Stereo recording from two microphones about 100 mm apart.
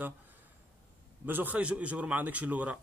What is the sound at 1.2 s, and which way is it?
A man's voice, 20° right (ahead or behind).